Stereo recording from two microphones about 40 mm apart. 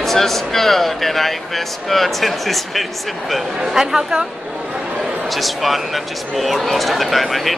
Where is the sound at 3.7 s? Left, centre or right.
Centre.